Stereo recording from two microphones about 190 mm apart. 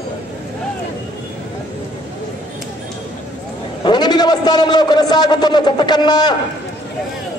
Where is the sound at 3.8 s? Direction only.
20° left (ahead or behind).